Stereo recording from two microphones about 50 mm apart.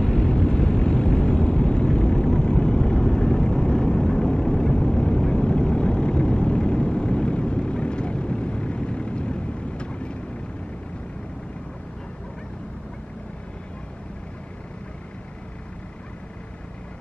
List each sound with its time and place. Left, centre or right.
0.0 s vehicle: centre